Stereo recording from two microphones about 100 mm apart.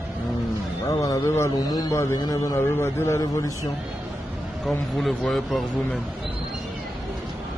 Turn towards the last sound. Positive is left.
turn(degrees=0)  # may be behind; listen again after turning